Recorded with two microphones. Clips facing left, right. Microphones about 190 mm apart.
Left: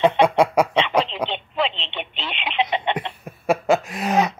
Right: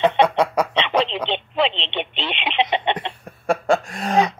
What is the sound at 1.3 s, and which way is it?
Telephone, 25° right (ahead or behind).